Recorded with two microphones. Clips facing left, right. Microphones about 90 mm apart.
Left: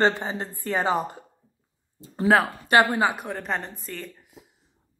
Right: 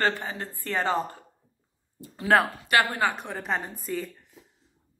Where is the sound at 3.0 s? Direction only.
15° left (ahead or behind).